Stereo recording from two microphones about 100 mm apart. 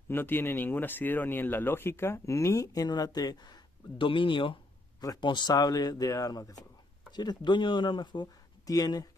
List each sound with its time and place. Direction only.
0.1 s speech: 20° left (ahead or behind); by 9.0 s 40° left (ahead or behind)